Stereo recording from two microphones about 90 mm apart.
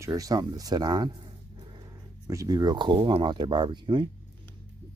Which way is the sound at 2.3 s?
45° right (ahead or behind).